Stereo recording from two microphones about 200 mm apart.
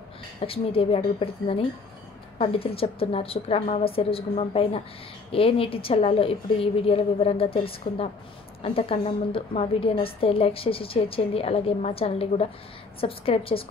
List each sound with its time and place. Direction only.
0.5 s a woman's voice: 30° left (ahead or behind)